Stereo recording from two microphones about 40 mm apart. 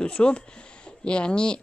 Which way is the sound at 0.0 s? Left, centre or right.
Left.